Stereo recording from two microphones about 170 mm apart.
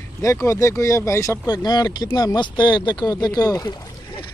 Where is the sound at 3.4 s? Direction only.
20° left (ahead or behind).